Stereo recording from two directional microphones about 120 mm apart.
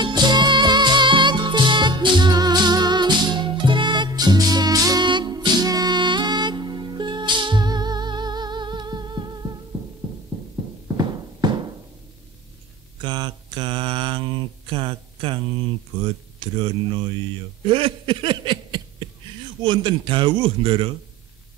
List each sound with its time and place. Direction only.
0.0 s music: 35° right (ahead or behind)
11.4 s a sound: 35° right (ahead or behind)
13.0 s mantra: 40° right (ahead or behind)
16.3 s speech: 40° right (ahead or behind)
17.6 s a sound: 45° right (ahead or behind)
19.6 s a man's voice: 40° right (ahead or behind)